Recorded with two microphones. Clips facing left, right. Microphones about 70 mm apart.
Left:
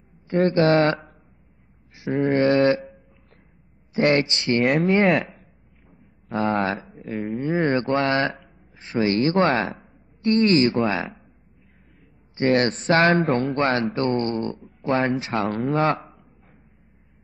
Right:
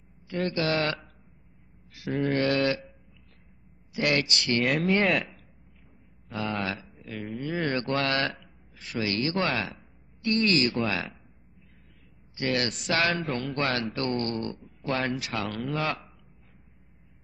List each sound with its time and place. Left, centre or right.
0.3 s speech: left
2.0 s a sound: left
2.3 s mantra: left
3.9 s speech: left
4.6 s speech: centre
5.3 s a sound: centre
6.3 s speech: left
7.3 s speech: left
12.4 s speech: left